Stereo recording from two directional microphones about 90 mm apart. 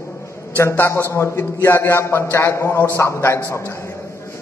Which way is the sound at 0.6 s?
30° left (ahead or behind).